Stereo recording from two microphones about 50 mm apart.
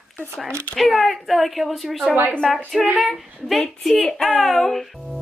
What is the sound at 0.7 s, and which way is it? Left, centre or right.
Speech, centre.